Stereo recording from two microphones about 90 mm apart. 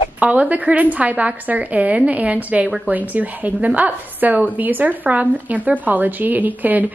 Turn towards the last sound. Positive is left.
turn(degrees=-20)  # may be behind; listen again after turning